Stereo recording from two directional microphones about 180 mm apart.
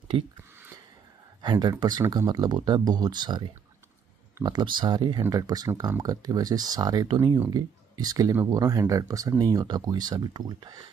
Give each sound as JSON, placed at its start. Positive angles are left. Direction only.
{"t": 0.1, "sound": "speech", "side_deg": -30}
{"t": 1.4, "sound": "speech", "side_deg": -25}